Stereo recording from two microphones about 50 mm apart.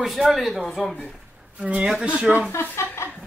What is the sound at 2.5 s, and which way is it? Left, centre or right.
Speech, left.